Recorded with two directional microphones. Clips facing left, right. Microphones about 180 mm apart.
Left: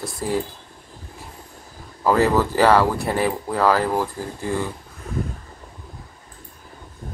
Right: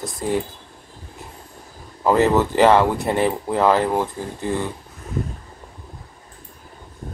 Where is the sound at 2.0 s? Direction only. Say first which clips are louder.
Right 1 dB; 20° right (ahead or behind).